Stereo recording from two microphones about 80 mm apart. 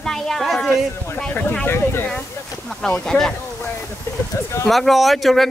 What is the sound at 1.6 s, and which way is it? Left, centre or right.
Speech, left.